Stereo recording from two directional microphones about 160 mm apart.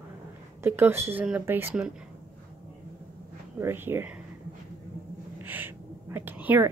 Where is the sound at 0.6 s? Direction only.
15° right (ahead or behind).